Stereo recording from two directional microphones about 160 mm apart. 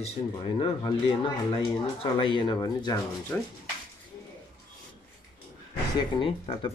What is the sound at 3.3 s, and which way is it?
Speech, 10° left (ahead or behind).